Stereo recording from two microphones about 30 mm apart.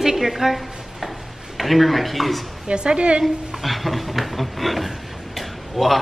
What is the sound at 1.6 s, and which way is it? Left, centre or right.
Speech, centre.